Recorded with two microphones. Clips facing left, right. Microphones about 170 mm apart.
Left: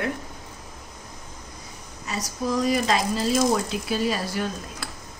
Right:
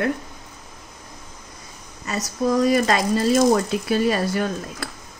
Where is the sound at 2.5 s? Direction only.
55° right (ahead or behind).